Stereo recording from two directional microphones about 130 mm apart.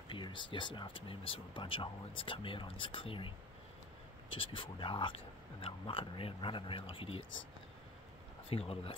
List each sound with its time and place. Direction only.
0.1 s speech: 40° left (ahead or behind)
4.4 s speech: 40° left (ahead or behind)
8.5 s speech: 50° left (ahead or behind)